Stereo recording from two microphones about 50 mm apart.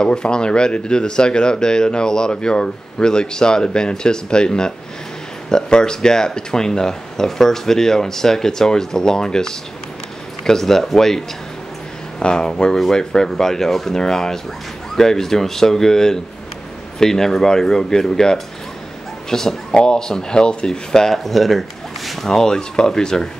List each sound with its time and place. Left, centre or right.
0.0 s speech: centre